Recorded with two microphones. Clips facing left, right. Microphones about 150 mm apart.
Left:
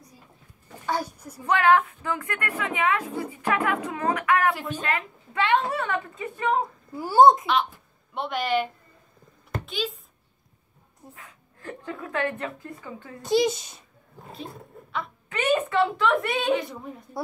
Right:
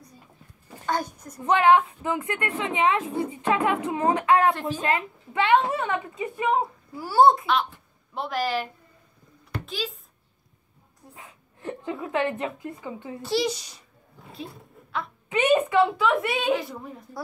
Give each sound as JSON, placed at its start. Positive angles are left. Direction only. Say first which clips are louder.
{"t": 0.8, "sound": "a child's voice", "louder": "right 1 dB", "side_deg": 10}
{"t": 1.4, "sound": "a woman's voice", "louder": "right 2 dB", "side_deg": -15}
{"t": 7.0, "sound": "a child's voice", "louder": "left 2 dB", "side_deg": 20}
{"t": 8.1, "sound": "a woman's voice", "louder": "left 1 dB", "side_deg": 0}
{"t": 9.7, "sound": "speech", "louder": "left 2 dB", "side_deg": 0}
{"t": 11.1, "sound": "a woman's voice", "louder": "right 2 dB", "side_deg": -20}
{"t": 13.2, "sound": "a child's voice", "louder": "left 4 dB", "side_deg": 20}
{"t": 15.2, "sound": "a woman's voice", "louder": "right 3 dB", "side_deg": -20}
{"t": 15.7, "sound": "a woman's voice", "louder": "right 1 dB", "side_deg": -5}